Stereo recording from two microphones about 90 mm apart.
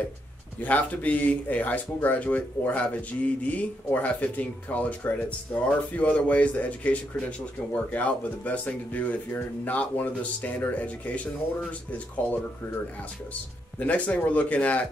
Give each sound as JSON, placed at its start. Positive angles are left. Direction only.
{"t": 0.6, "sound": "speech", "side_deg": 15}
{"t": 13.7, "sound": "speech", "side_deg": 15}